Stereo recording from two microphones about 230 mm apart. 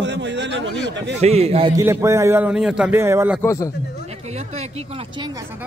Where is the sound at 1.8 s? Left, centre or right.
Centre.